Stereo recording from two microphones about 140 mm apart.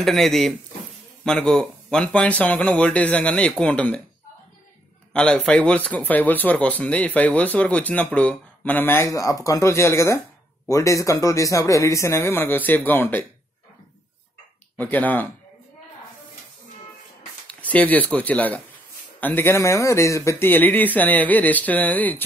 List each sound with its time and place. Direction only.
0.0 s speech: centre (ahead or behind)
5.1 s a man's voice: 5° left (ahead or behind)
14.8 s speech: 10° left (ahead or behind)
17.5 s speech: 10° left (ahead or behind)